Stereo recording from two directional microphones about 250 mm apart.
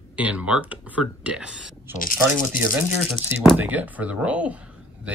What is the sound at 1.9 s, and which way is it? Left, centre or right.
Speech, left.